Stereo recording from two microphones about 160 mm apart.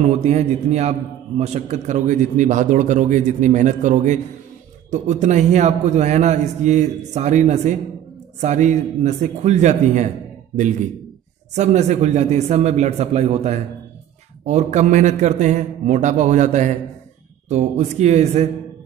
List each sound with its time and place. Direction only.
0.0 s a man's voice: 45° right (ahead or behind)
11.5 s a man's voice: 45° right (ahead or behind)